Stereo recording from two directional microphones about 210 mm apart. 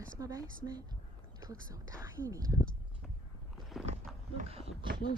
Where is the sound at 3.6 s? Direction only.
Centre (ahead or behind).